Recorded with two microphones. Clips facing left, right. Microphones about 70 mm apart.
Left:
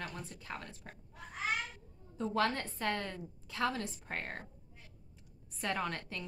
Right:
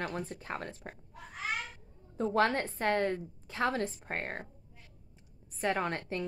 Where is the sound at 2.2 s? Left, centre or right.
Right.